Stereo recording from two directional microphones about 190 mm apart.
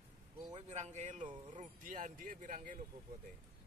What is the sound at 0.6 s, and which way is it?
Speech, 35° right (ahead or behind).